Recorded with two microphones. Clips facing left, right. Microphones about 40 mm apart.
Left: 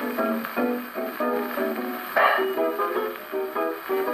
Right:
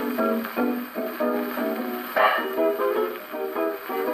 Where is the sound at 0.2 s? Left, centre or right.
Centre.